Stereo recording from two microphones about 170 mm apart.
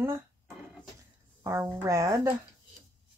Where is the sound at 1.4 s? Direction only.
15° right (ahead or behind).